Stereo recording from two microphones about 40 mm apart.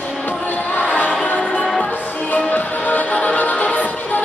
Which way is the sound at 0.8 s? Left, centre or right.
Left.